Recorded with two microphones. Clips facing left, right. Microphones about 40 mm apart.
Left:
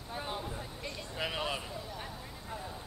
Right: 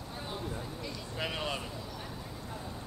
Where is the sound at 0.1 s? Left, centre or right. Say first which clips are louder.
Left 2 dB; centre.